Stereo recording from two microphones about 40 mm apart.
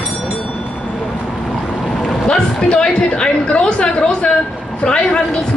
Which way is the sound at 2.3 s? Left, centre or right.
Centre.